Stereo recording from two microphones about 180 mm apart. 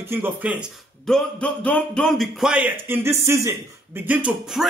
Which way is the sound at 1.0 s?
5° left (ahead or behind).